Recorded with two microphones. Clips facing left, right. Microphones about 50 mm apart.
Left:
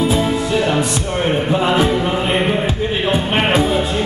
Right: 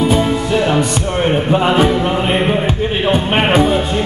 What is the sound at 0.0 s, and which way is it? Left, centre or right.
Music, centre.